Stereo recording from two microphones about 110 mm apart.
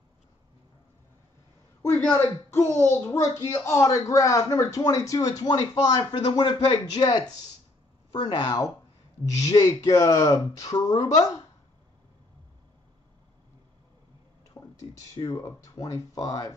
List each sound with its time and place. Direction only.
1.8 s speech: 20° left (ahead or behind)
6.1 s speech: 50° left (ahead or behind); by 11.4 s 30° left (ahead or behind)
14.5 s a sound: 25° left (ahead or behind)
15.2 s speech: 30° left (ahead or behind)